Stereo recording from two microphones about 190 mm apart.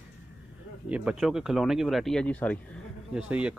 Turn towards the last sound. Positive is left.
turn(degrees=-5)  # may be behind; listen again after turning